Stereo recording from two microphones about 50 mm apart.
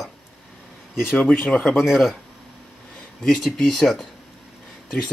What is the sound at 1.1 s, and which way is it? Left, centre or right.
Speech, left.